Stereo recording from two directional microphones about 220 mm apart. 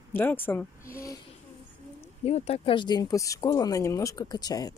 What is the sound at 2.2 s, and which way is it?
Speech, 30° left (ahead or behind).